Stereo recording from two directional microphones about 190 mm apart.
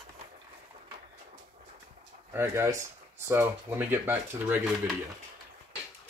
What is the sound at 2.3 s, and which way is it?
Speech, 15° right (ahead or behind).